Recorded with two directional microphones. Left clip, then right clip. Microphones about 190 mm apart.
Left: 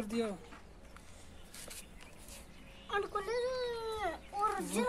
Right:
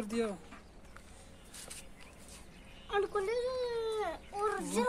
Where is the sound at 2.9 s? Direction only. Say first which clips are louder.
Right 3 dB; 20° right (ahead or behind).